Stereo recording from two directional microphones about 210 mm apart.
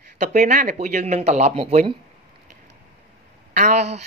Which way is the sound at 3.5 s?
35° right (ahead or behind).